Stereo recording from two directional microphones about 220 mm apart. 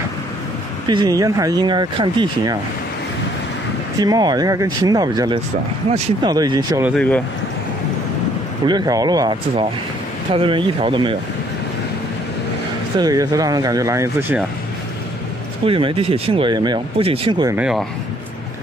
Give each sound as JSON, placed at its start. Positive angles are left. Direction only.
{"t": 0.8, "sound": "speech", "side_deg": -20}
{"t": 4.0, "sound": "speech", "side_deg": -15}
{"t": 7.0, "sound": "speech", "side_deg": 5}
{"t": 8.6, "sound": "speech", "side_deg": -20}
{"t": 13.0, "sound": "speech", "side_deg": -15}
{"t": 15.6, "sound": "speech", "side_deg": -25}
{"t": 17.6, "sound": "speech", "side_deg": -5}